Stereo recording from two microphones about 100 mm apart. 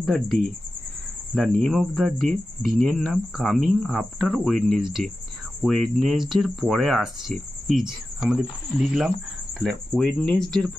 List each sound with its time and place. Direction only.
0.0 s speech: 5° left (ahead or behind)